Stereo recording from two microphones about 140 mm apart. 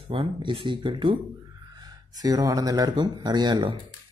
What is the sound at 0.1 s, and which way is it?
Speech, 40° right (ahead or behind).